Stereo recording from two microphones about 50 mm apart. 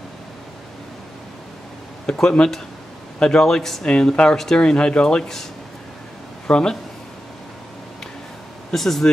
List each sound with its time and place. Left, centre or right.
2.0 s speech: centre
3.8 s speech: centre
8.7 s speech: centre